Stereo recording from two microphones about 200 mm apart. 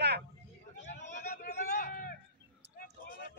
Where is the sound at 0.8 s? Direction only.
40° left (ahead or behind).